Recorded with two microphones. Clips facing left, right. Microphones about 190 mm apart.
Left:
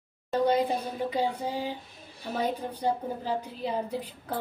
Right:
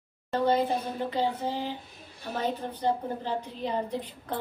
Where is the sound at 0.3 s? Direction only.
15° left (ahead or behind).